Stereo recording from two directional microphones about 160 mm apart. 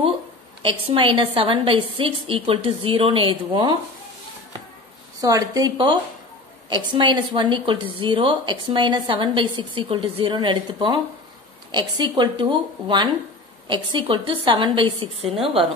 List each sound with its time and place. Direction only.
0.6 s a woman's voice: 35° right (ahead or behind)
5.2 s a woman's voice: 25° right (ahead or behind)